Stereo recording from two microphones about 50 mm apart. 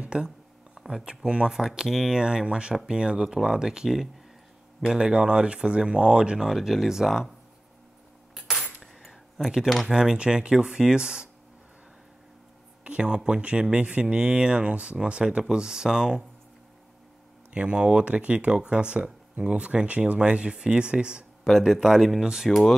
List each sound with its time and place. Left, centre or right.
0.0 s a sound: centre
0.7 s speech: centre
8.4 s a sound: centre
9.8 s speech: centre
12.8 s speech: right
17.5 s speech: right
21.5 s speech: centre